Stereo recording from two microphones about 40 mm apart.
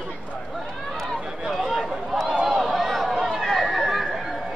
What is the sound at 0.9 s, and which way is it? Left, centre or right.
Run, centre.